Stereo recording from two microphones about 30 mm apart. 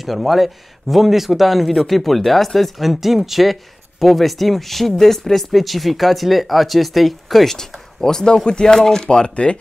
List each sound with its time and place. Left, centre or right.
0.0 s speech: centre
2.8 s speech: centre
8.0 s speech: left